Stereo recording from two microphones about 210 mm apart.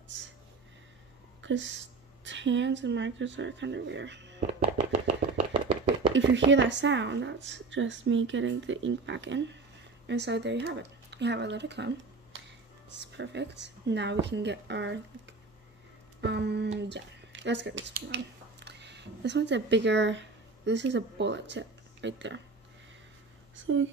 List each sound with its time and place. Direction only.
1.4 s a sound: 60° right (ahead or behind)
2.2 s speech: 60° right (ahead or behind)
4.9 s chopping: 25° right (ahead or behind)
6.1 s speech: 60° right (ahead or behind)
16.2 s speech: 55° right (ahead or behind)
23.5 s speech: 65° right (ahead or behind)